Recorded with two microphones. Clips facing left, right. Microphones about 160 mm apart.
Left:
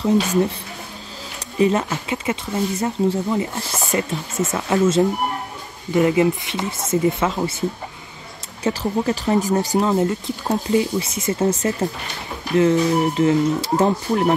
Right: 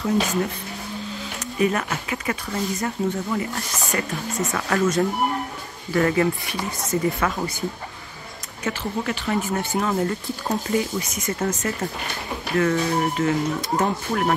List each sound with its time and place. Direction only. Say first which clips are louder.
0.0 s speech: left 5 dB; 25° left (ahead or behind)
1.6 s speech: left 4 dB; 25° left (ahead or behind)
8.6 s speech: left 6 dB; 35° left (ahead or behind)